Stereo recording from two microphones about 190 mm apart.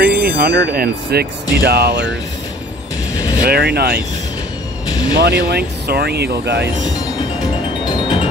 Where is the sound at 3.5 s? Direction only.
55° right (ahead or behind).